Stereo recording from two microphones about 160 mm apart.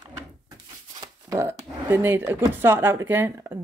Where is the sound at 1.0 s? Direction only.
20° right (ahead or behind).